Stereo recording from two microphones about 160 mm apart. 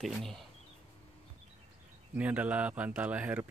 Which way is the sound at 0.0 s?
Centre (ahead or behind).